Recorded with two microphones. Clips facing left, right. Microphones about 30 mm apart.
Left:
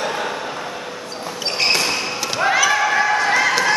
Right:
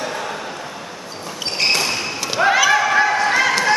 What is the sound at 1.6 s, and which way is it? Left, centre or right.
Basketball bounce, centre.